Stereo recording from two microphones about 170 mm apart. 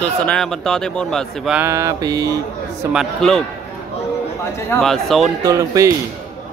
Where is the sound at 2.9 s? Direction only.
Centre (ahead or behind).